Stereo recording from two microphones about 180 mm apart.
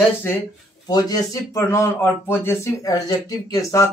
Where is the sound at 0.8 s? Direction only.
20° left (ahead or behind).